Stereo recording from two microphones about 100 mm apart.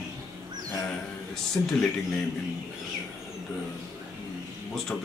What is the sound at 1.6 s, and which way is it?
Speech, 15° left (ahead or behind).